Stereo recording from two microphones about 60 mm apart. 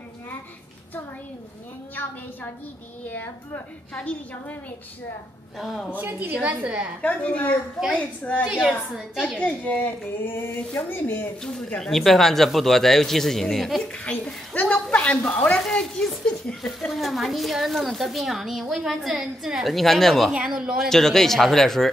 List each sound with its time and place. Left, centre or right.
4.0 s a woman's voice: left
5.6 s a woman's voice: centre
5.9 s a woman's voice: right
7.0 s a woman's voice: left
8.6 s a woman's voice: centre
9.4 s a woman's voice: left
10.2 s speech: left
11.4 s a woman's voice: centre
13.8 s a woman's voice: centre
15.8 s speech: centre
16.9 s a woman's voice: centre
20.3 s a woman's voice: centre
20.7 s a woman's voice: centre